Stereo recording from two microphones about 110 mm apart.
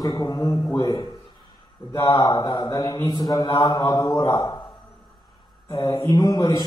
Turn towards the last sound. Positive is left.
turn(degrees=35)  # may be behind; listen again after turning